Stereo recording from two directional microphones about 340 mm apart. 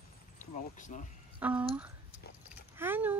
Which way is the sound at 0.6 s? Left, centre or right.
Left.